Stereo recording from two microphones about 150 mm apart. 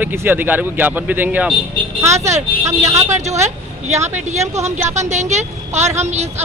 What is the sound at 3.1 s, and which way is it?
Speech, 50° right (ahead or behind).